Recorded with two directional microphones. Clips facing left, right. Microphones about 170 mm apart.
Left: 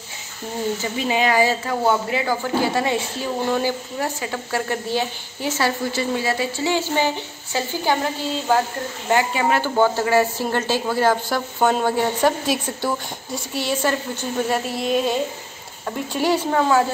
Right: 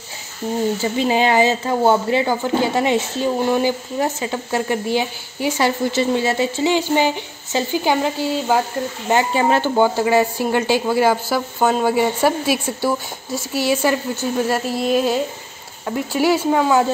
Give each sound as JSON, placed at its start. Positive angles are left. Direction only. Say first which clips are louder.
{"t": 0.9, "sound": "speech", "louder": "right 3 dB", "side_deg": -30}
{"t": 9.1, "sound": "speech", "louder": "right 3 dB", "side_deg": -30}
{"t": 9.8, "sound": "speech", "louder": "even", "side_deg": -15}
{"t": 14.5, "sound": "a sound", "louder": "right 1 dB", "side_deg": 0}
{"t": 16.1, "sound": "speech", "louder": "right 4 dB", "side_deg": -10}